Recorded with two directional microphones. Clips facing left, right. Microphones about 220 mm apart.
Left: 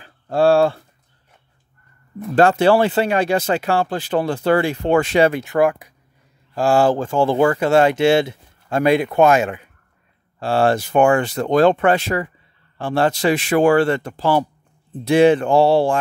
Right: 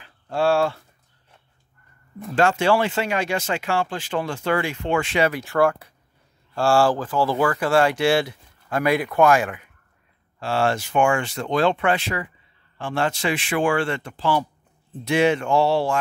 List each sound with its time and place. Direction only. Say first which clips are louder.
0.0 s a sound: left 6 dB; 35° left (ahead or behind)
2.3 s speech: left 5 dB; 35° left (ahead or behind)
5.3 s speech: left 3 dB; 20° left (ahead or behind)